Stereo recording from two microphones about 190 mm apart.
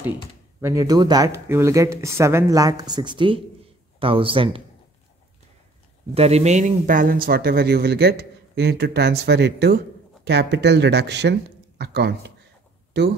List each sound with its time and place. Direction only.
0.6 s speech: 15° right (ahead or behind)
6.1 s speech: 35° right (ahead or behind); by 13.1 s 60° right (ahead or behind)